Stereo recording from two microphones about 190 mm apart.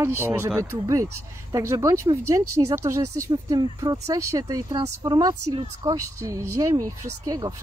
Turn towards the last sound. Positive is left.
turn(degrees=-20)  # may be behind; listen again after turning